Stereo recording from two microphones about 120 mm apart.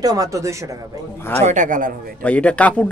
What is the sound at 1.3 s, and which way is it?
Speech, 80° right.